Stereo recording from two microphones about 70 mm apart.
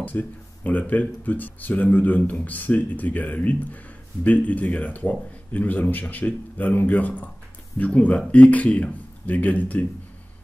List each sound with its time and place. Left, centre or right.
0.0 s speech: left